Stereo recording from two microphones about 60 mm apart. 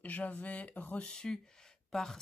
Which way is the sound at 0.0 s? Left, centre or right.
Left.